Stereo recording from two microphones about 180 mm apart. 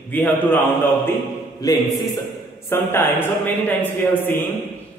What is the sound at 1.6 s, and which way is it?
Music, 20° left (ahead or behind).